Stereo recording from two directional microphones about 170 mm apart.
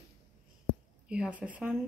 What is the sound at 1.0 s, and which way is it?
Speech, 5° right (ahead or behind).